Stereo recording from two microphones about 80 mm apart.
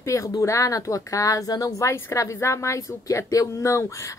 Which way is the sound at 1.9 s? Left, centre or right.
Left.